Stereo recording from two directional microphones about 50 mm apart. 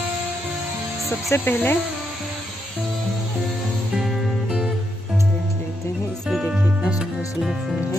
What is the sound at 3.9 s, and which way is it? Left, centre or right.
Music, centre.